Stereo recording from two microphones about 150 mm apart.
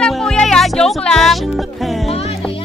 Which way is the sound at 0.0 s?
5° left (ahead or behind).